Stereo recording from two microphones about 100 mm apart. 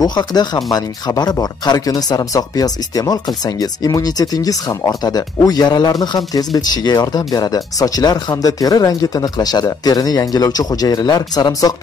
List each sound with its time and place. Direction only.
0.0 s speech: 45° left (ahead or behind)